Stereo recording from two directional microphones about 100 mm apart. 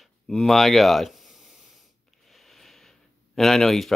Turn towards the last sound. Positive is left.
turn(degrees=5)  # may be behind; listen again after turning